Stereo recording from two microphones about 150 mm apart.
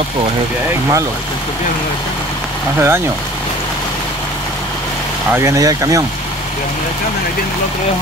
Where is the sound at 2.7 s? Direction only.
15° right (ahead or behind).